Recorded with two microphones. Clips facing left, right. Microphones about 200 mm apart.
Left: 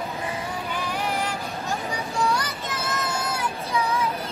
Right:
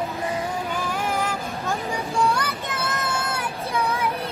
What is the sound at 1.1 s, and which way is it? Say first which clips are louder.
Vehicle: right 2 dB; 50° right (ahead or behind).